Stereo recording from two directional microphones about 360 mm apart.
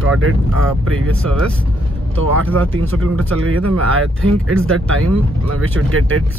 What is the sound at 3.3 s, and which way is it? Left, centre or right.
Speech, right.